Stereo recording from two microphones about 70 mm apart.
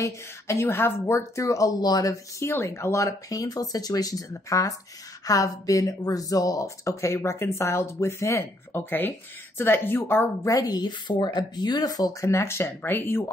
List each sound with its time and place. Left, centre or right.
0.0 s a woman's voice: left
1.4 s speech: left
2.5 s speech: left
8.7 s a woman's voice: left
10.5 s speech: left